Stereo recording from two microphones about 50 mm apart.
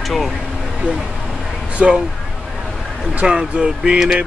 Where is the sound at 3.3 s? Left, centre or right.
Centre.